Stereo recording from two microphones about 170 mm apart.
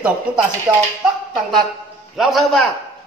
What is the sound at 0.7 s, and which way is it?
Speech, 25° right (ahead or behind).